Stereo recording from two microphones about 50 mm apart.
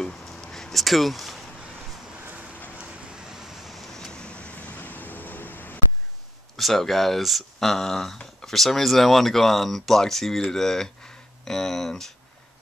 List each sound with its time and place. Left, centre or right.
0.0 s a sound: centre
2.8 s vehicle: right
3.3 s vehicle: centre; by 5.8 s left
6.5 s speech: centre